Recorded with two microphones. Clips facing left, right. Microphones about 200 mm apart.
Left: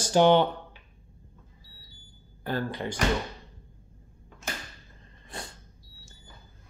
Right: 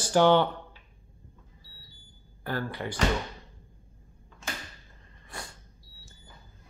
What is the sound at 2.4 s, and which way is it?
Speech, 20° left (ahead or behind).